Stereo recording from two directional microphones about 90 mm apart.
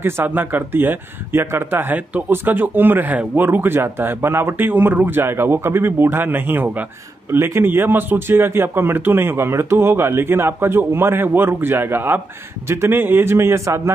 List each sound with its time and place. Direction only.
0.0 s speech: 20° right (ahead or behind)